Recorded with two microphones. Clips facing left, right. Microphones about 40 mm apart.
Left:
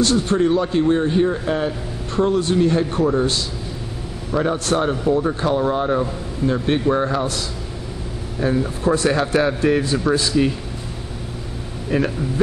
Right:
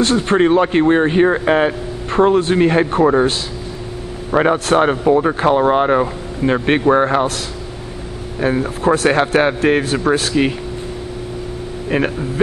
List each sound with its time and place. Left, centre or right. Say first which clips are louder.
0.0 s a man's voice: right 4 dB; right
4.3 s speech: right 6 dB; right
8.4 s a man's voice: right 3 dB; right
10.1 s speech: right 1 dB; right
11.9 s a man's voice: right 2 dB; right